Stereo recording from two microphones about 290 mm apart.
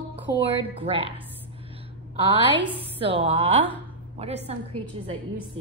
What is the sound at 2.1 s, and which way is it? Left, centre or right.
A woman's voice, centre.